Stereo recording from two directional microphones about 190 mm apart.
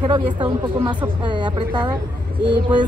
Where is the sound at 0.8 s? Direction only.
25° right (ahead or behind).